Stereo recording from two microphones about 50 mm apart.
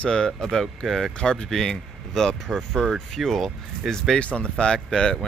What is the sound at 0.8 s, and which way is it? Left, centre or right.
Speech, centre.